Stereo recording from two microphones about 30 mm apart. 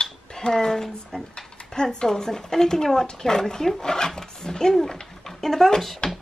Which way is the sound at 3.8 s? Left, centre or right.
Left.